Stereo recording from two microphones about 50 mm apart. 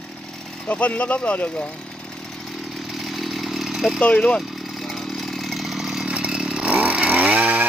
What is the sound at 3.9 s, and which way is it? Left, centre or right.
Speech, left.